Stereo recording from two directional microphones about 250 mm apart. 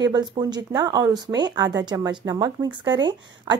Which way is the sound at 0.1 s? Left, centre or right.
Centre.